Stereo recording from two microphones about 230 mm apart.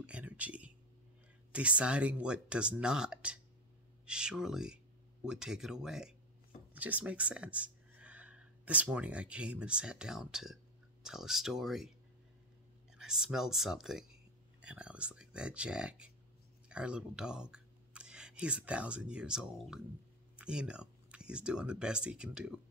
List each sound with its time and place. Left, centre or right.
0.0 s a sound: centre
1.5 s speech: centre
12.9 s speech: centre